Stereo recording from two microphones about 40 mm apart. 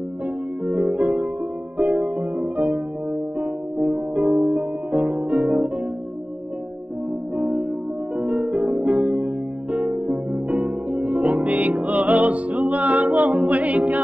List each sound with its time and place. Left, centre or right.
0.7 s music: right
4.6 s music: right
7.3 s music: right